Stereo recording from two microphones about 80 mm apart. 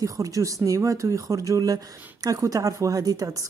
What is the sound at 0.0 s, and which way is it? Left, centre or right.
A woman's voice, right.